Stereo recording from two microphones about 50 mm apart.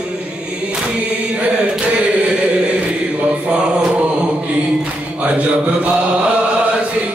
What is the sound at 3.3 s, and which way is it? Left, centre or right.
Mantra, right.